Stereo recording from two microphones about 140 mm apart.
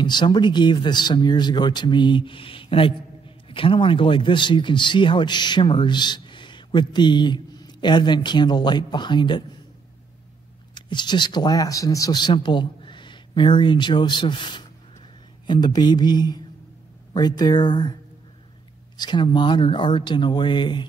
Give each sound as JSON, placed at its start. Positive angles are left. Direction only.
{"t": 0.0, "sound": "speech", "side_deg": 30}
{"t": 10.7, "sound": "speech", "side_deg": 35}
{"t": 18.9, "sound": "speech", "side_deg": 35}